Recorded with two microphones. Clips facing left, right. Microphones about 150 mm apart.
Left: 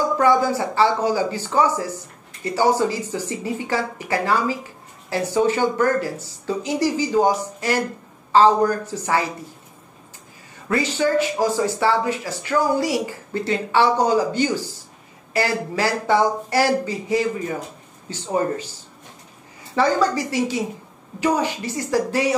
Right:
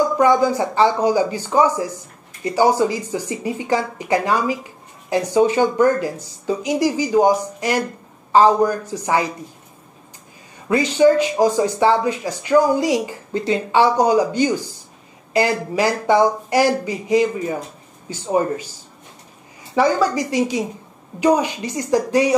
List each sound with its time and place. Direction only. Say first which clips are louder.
0.2 s speech: right 1 dB; 15° right (ahead or behind)
10.7 s speech: right 6 dB; 15° right (ahead or behind)
19.7 s speech: right 2 dB; 15° right (ahead or behind)